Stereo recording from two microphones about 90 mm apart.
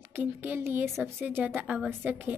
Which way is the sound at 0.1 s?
20° right (ahead or behind).